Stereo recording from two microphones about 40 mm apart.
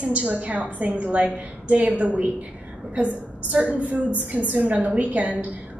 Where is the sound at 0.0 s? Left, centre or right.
Right.